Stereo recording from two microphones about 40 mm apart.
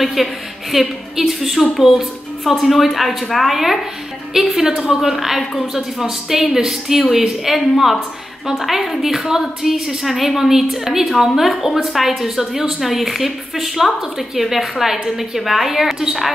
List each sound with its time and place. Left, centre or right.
0.0 s a woman's voice: centre